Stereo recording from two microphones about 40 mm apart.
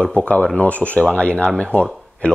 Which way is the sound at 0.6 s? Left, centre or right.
Left.